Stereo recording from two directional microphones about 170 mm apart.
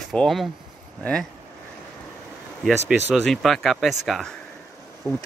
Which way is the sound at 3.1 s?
Centre (ahead or behind).